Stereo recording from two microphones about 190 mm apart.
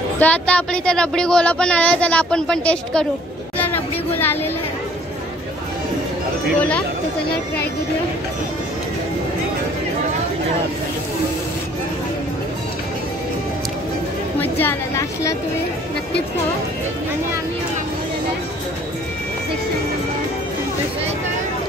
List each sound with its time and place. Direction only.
0.2 s speech: 5° left (ahead or behind)
3.5 s a sound: 10° left (ahead or behind)
14.4 s a woman's voice: 10° left (ahead or behind)